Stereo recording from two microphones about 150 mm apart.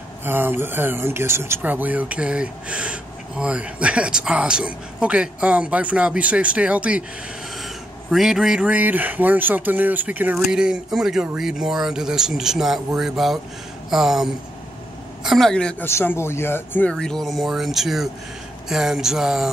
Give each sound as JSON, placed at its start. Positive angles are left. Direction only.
{"t": 0.2, "sound": "speech", "side_deg": -15}
{"t": 15.9, "sound": "speech", "side_deg": 15}
{"t": 16.9, "sound": "speech", "side_deg": 5}